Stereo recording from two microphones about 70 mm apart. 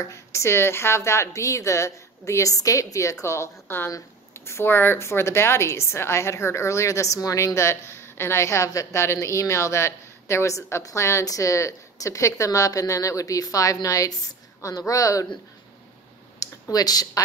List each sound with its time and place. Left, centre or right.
0.0 s a woman's voice: left
16.3 s speech: left